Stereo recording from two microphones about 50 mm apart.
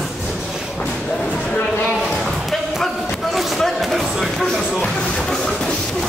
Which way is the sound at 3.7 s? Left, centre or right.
Centre.